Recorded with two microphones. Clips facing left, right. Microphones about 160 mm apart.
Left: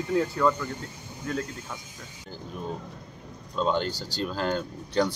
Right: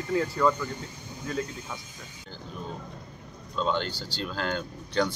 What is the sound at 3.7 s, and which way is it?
Speech, 40° left (ahead or behind).